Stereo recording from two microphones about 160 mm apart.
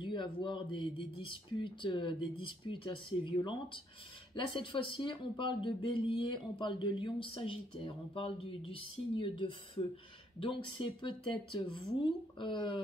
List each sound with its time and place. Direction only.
0.0 s speech: 30° left (ahead or behind)